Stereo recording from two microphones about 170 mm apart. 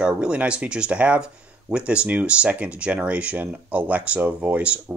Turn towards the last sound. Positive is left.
turn(degrees=-10)  # may be behind; listen again after turning